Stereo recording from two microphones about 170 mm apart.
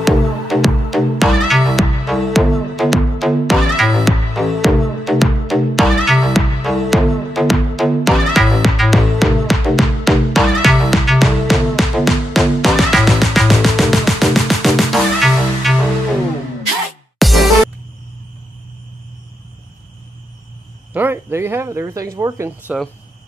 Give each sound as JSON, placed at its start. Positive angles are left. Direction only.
{"t": 0.0, "sound": "music", "side_deg": 0}
{"t": 17.2, "sound": "music", "side_deg": 0}
{"t": 20.9, "sound": "a sound", "side_deg": -10}